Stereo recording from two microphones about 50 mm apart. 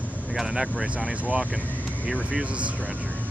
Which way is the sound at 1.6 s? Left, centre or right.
Left.